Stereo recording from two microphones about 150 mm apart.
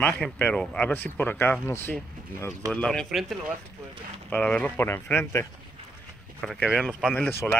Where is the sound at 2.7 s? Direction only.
5° left (ahead or behind).